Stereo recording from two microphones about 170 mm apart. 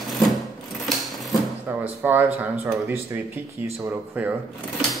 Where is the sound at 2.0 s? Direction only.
10° right (ahead or behind).